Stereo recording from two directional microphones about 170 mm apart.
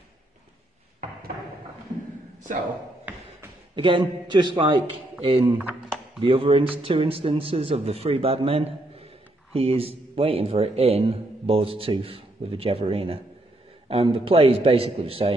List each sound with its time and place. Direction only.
3.7 s a man's voice: 30° right (ahead or behind)
5.4 s speech: 10° right (ahead or behind)
6.2 s a man's voice: 30° right (ahead or behind)